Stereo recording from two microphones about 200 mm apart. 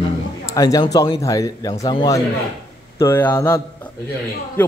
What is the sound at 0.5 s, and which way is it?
Speech, 15° left (ahead or behind).